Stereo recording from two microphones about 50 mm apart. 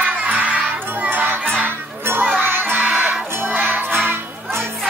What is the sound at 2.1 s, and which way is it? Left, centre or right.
Music, right.